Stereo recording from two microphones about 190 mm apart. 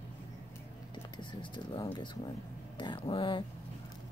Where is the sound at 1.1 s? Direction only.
25° left (ahead or behind).